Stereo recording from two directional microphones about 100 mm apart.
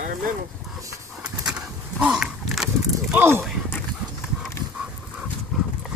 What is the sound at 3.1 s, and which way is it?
Speech, 25° right (ahead or behind).